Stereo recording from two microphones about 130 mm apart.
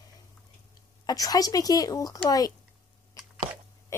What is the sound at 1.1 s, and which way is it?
Speech, 30° left (ahead or behind).